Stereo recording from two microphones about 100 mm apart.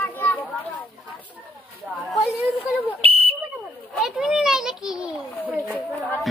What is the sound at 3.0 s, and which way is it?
Whistle, 80° right.